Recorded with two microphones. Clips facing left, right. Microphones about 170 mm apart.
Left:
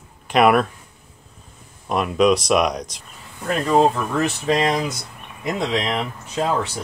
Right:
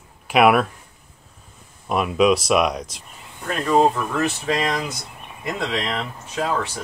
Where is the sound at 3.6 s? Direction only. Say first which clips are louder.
Even; 10° left (ahead or behind).